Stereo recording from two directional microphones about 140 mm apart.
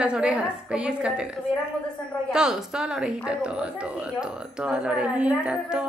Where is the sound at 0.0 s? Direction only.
5° right (ahead or behind).